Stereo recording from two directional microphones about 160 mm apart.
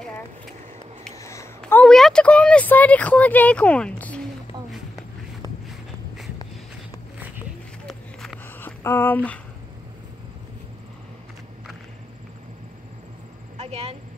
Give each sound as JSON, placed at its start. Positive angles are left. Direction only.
{"t": 1.1, "sound": "a sound", "side_deg": 20}
{"t": 1.6, "sound": "speech", "side_deg": 5}
{"t": 7.8, "sound": "walk", "side_deg": 0}
{"t": 8.5, "sound": "speech", "side_deg": 15}
{"t": 13.6, "sound": "vehicle", "side_deg": -40}